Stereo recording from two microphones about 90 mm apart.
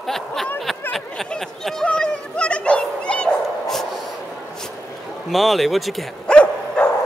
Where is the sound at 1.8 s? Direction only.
10° left (ahead or behind).